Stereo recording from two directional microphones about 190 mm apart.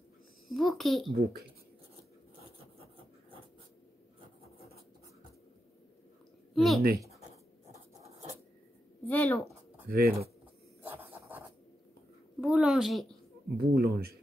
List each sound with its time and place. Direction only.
0.5 s a child's voice: centre (ahead or behind)
6.5 s a sound: centre (ahead or behind)
8.0 s a sound: 35° right (ahead or behind)
9.0 s a woman's voice: 10° left (ahead or behind)
9.8 s speech: 55° right (ahead or behind)
10.8 s zipper: 10° right (ahead or behind)
12.4 s a child's voice: 5° right (ahead or behind)
13.6 s speech: 55° right (ahead or behind)